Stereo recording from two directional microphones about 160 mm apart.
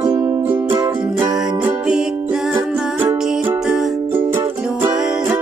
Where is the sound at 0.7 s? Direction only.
25° right (ahead or behind).